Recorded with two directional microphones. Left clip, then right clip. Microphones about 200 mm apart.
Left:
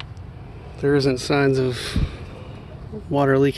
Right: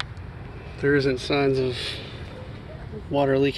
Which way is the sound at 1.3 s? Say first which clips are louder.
Left 3 dB; 45° left (ahead or behind).